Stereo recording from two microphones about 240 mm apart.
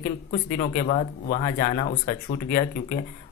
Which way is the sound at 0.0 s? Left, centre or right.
Left.